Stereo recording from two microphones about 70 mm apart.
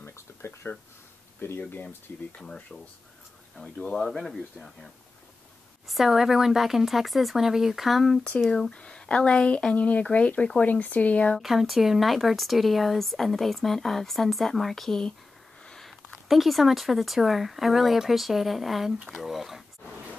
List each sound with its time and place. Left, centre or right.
0.0 s a sound: left
1.4 s speech: left
2.3 s a woman's voice: centre
5.9 s speech: centre
8.5 s a woman's voice: centre
11.3 s speech: centre